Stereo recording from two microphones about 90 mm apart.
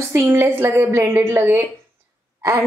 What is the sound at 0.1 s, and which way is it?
A woman's voice, 25° right (ahead or behind).